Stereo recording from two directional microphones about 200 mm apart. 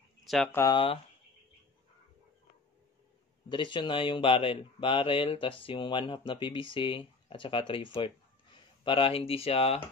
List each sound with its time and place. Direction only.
0.2 s a sound: centre (ahead or behind)
0.5 s speech: 15° left (ahead or behind)
3.4 s speech: 25° left (ahead or behind)